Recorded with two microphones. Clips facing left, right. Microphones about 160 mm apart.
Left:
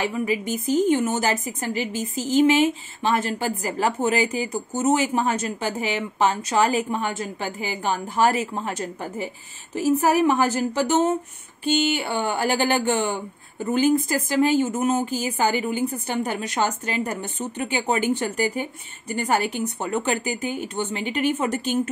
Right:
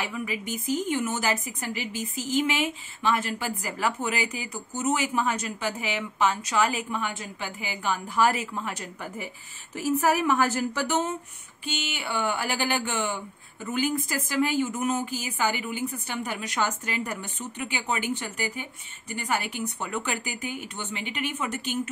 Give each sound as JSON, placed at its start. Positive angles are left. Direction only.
{"t": 0.0, "sound": "a woman's voice", "side_deg": 30}
{"t": 17.0, "sound": "a woman's voice", "side_deg": 45}
{"t": 17.6, "sound": "a woman's voice", "side_deg": 30}